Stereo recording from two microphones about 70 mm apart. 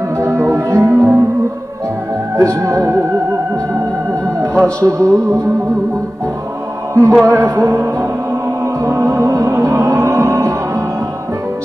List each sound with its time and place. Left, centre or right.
0.2 s music: right
2.3 s music: right
4.6 s speech: centre
4.9 s music: right
6.9 s music: right